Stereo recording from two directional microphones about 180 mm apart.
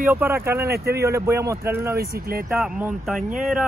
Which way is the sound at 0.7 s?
60° right (ahead or behind).